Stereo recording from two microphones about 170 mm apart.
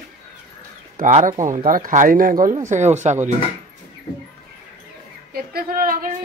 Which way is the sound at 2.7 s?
45° right (ahead or behind).